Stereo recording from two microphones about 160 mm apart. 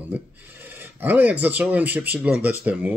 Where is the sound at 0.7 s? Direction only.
10° right (ahead or behind).